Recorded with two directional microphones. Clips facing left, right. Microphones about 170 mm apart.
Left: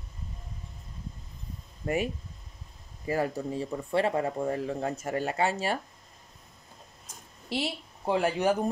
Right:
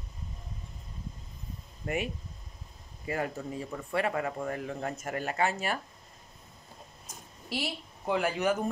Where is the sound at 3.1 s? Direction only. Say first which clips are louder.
Left 4 dB; 35° left (ahead or behind).